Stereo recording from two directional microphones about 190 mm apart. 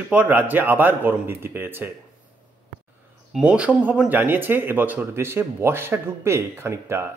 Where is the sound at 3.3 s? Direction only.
5° right (ahead or behind).